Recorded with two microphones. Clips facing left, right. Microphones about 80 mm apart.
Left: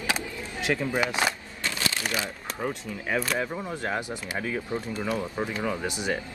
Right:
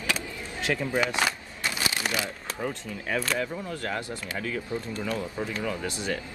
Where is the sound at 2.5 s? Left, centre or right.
Centre.